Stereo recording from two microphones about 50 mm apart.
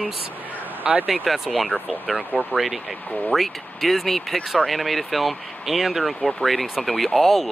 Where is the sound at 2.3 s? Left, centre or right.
Left.